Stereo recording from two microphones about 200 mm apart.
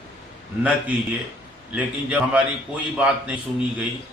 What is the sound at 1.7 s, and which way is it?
A man's voice, 5° right (ahead or behind).